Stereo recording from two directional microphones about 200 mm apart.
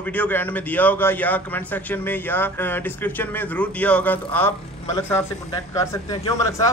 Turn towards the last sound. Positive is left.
turn(degrees=15)  # may be behind; listen again after turning